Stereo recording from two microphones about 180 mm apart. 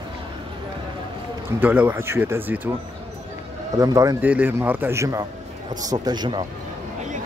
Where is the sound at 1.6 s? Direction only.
10° right (ahead or behind).